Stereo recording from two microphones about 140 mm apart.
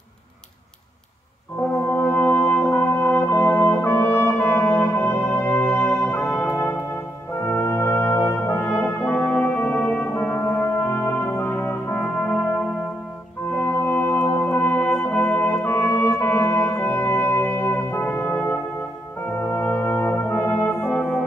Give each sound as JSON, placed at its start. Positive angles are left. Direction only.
{"t": 1.6, "sound": "music", "side_deg": 15}
{"t": 7.4, "sound": "brass instrument", "side_deg": 15}
{"t": 13.6, "sound": "music", "side_deg": 15}
{"t": 19.3, "sound": "brass instrument", "side_deg": 15}